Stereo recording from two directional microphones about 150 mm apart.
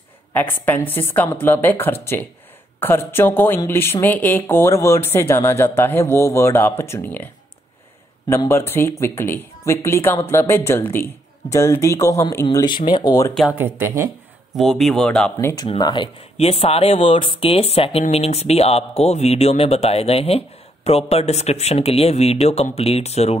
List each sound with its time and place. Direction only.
0.3 s a woman's voice: 15° left (ahead or behind)
8.5 s a woman's voice: 15° left (ahead or behind)
12.4 s speech: 30° left (ahead or behind)
13.6 s speech: 15° right (ahead or behind)
14.5 s speech: centre (ahead or behind)
15.4 s speech: 25° left (ahead or behind); by 23.3 s 45° left (ahead or behind)